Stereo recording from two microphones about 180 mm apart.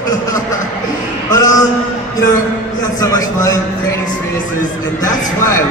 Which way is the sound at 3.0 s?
20° left (ahead or behind).